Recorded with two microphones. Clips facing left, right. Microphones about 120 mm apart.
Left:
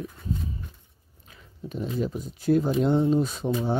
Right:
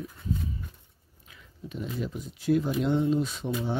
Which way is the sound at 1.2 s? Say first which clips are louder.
Left 4 dB; 40° left (ahead or behind).